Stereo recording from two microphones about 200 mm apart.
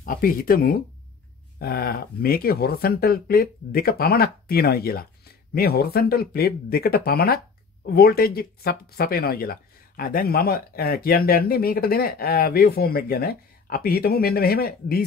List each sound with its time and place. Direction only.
0.0 s speech: 45° left (ahead or behind)